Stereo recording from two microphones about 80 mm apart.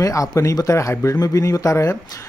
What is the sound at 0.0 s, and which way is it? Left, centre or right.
Speech, left.